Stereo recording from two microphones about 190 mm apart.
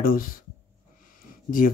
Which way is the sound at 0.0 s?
45° left (ahead or behind).